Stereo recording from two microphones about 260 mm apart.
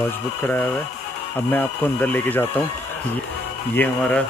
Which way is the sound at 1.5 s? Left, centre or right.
Centre.